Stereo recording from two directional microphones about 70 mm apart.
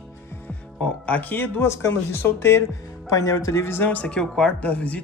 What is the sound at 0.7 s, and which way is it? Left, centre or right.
Speech, centre.